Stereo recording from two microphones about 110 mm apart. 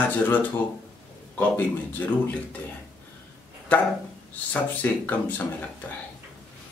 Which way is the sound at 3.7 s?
15° left (ahead or behind).